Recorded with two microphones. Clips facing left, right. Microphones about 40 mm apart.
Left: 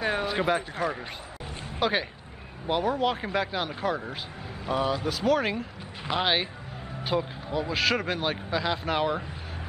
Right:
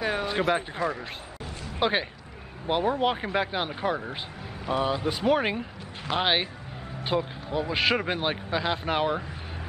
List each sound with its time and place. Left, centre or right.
0.0 s speech: centre
0.7 s a man's voice: centre
1.8 s speech: centre